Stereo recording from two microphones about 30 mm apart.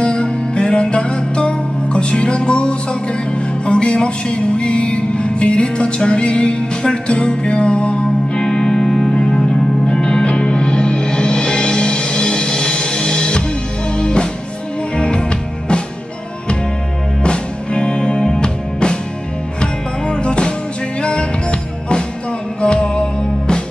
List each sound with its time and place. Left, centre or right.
0.0 s music: left
8.4 s music: centre
17.2 s music: left